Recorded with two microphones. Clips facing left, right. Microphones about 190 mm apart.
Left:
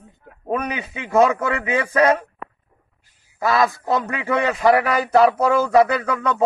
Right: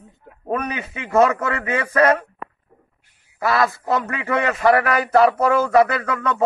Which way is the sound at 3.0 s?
60° right (ahead or behind).